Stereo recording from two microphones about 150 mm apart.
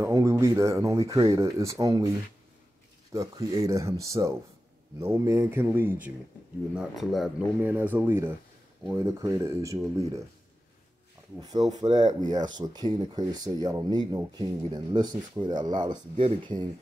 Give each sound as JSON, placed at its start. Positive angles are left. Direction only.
{"t": 0.0, "sound": "speech", "side_deg": -20}
{"t": 3.1, "sound": "speech", "side_deg": -20}
{"t": 7.6, "sound": "speech", "side_deg": -10}
{"t": 11.9, "sound": "speech", "side_deg": -55}
{"t": 12.4, "sound": "speech", "side_deg": -30}